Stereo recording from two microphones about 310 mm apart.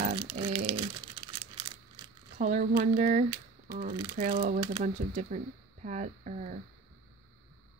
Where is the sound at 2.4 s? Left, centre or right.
Right.